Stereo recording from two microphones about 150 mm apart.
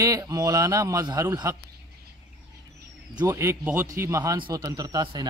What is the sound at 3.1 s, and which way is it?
Speech, 25° right (ahead or behind).